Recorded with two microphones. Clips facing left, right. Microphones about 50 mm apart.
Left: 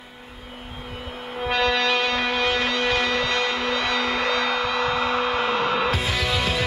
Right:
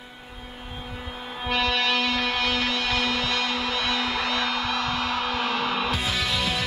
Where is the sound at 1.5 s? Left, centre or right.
Left.